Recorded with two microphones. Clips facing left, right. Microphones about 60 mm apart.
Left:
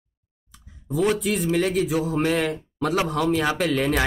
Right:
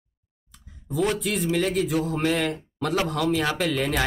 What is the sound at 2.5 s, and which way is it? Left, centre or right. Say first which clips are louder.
Speech: left 2 dB; centre.